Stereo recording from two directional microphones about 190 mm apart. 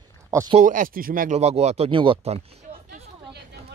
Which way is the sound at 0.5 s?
45° right (ahead or behind).